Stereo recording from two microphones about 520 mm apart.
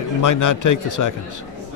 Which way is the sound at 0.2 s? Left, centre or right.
Left.